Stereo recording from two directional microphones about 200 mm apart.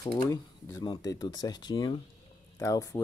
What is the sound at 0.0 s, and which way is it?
Speech, 15° left (ahead or behind).